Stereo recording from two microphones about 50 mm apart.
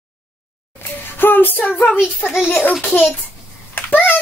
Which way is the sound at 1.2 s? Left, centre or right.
Left.